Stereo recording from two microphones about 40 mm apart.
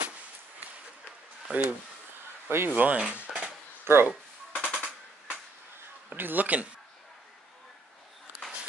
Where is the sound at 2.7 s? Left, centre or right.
Right.